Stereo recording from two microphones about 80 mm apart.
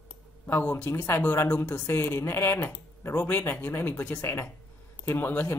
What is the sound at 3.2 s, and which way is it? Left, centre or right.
Speech, left.